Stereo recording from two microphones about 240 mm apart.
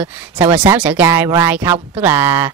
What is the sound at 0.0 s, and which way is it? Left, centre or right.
A woman's voice, centre.